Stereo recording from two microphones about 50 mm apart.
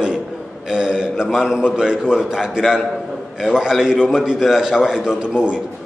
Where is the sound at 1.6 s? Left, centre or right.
Centre.